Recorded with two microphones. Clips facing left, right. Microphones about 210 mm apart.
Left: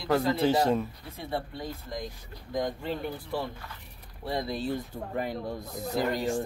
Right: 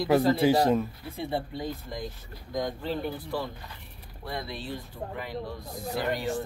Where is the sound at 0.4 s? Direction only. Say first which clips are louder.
Right 2 dB; 10° right (ahead or behind).